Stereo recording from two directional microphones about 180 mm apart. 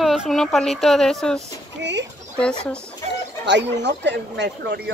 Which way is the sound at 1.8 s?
75° right (ahead or behind).